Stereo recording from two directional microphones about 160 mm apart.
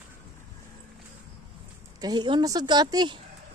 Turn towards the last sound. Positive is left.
turn(degrees=-25)  # may be behind; listen again after turning